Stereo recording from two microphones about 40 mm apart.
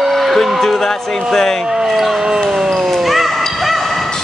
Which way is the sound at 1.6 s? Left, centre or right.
Centre.